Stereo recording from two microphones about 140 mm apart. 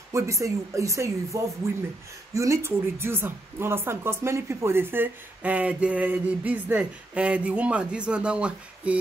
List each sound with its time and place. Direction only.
0.1 s a woman's voice: 20° right (ahead or behind)